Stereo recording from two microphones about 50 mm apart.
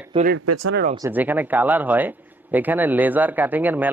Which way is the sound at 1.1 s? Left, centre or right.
Right.